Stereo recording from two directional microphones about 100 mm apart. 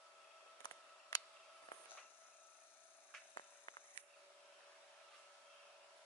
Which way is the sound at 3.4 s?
55° left (ahead or behind).